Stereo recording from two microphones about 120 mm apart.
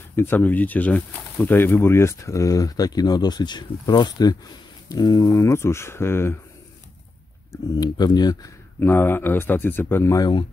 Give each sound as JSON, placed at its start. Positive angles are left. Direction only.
{"t": 0.1, "sound": "speech", "side_deg": 20}
{"t": 7.5, "sound": "speech", "side_deg": 35}
{"t": 8.7, "sound": "speech", "side_deg": 20}